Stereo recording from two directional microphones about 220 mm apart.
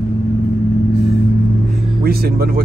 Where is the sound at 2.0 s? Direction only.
45° right (ahead or behind).